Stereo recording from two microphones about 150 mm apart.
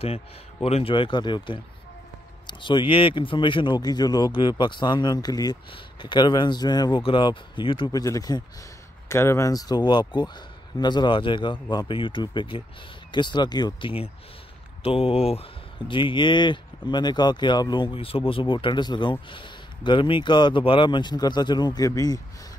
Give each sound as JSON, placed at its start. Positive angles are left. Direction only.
{"t": 0.0, "sound": "speech", "side_deg": 40}